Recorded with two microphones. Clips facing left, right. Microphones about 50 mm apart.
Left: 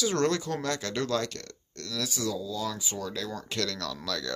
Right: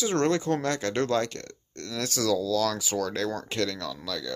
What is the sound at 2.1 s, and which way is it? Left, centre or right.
Speech, right.